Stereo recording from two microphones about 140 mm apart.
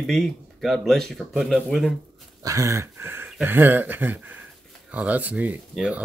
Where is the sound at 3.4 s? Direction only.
15° right (ahead or behind).